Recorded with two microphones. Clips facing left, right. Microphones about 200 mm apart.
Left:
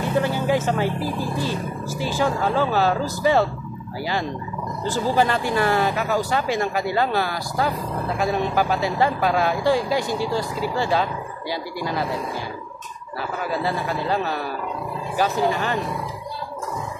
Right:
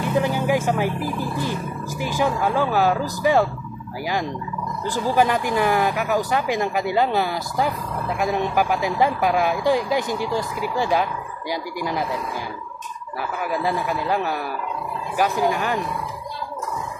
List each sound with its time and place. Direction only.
0.2 s speech: 15° right (ahead or behind)
13.4 s speech: 15° right (ahead or behind)